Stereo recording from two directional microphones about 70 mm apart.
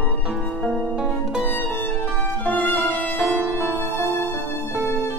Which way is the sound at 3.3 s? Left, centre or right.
Right.